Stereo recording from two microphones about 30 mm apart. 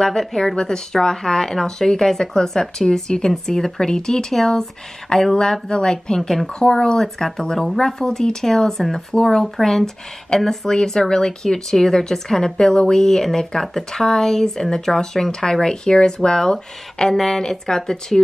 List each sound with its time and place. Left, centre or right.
0.2 s speech: centre
0.6 s speech: left
6.6 s speech: left
9.6 s speech: centre
10.7 s speech: centre
17.1 s speech: centre